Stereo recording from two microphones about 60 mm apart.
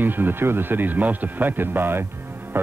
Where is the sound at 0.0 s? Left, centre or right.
Right.